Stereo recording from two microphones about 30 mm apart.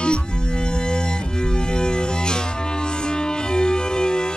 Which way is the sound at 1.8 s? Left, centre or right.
Left.